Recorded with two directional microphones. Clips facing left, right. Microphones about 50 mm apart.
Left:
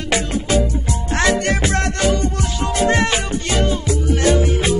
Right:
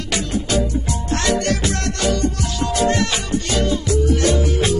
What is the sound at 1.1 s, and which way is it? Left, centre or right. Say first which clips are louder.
Music: left 2 dB; left.